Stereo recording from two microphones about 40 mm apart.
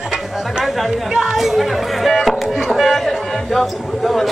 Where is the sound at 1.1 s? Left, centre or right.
Centre.